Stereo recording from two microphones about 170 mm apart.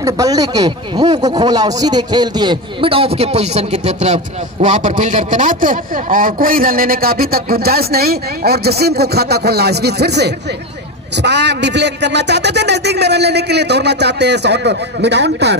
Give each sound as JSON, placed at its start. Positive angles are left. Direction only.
{"t": 0.0, "sound": "speech", "side_deg": -20}
{"t": 11.2, "sound": "speech", "side_deg": -90}